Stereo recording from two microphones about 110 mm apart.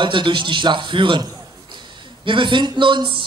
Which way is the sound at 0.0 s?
45° right (ahead or behind).